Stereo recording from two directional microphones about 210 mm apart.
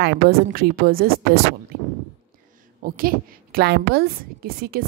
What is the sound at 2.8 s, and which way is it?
A woman's voice, 45° right (ahead or behind).